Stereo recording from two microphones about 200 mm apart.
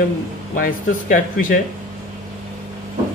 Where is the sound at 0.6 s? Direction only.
40° left (ahead or behind).